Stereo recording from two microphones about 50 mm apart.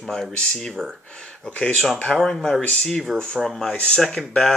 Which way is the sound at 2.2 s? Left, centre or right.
Centre.